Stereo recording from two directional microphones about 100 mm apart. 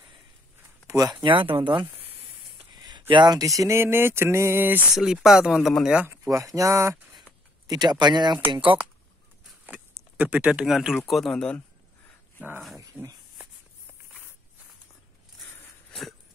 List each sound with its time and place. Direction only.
0.8 s speech: 35° right (ahead or behind)
1.2 s speech: 55° right (ahead or behind)
2.7 s a sound: 45° right (ahead or behind); by 4.8 s 20° right (ahead or behind)
4.9 s speech: 5° right (ahead or behind)
6.2 s speech: 35° right (ahead or behind)
7.6 s speech: 45° right (ahead or behind)
9.7 s a sound: 15° right (ahead or behind)
10.6 s speech: 5° right (ahead or behind)
12.9 s speech: 10° right (ahead or behind)
15.9 s a sound: centre (ahead or behind)